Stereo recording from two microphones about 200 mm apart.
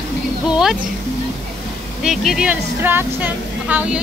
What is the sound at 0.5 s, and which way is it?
Speech, centre (ahead or behind).